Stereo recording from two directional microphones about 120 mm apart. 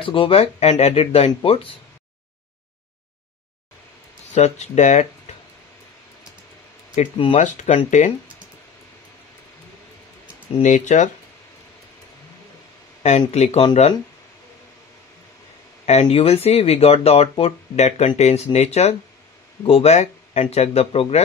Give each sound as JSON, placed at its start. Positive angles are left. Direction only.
{"t": 0.0, "sound": "speech", "side_deg": 45}
{"t": 4.4, "sound": "speech", "side_deg": 75}
{"t": 7.3, "sound": "speech", "side_deg": 85}
{"t": 10.6, "sound": "speech", "side_deg": 90}
{"t": 13.0, "sound": "speech", "side_deg": 65}
{"t": 15.8, "sound": "speech", "side_deg": 65}